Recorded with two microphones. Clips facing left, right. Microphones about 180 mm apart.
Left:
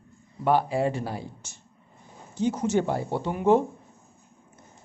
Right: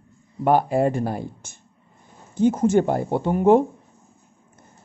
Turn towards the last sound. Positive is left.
turn(degrees=-50)  # may be behind; listen again after turning